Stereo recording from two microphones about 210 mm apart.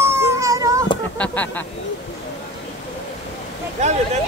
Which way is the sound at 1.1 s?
5° left (ahead or behind).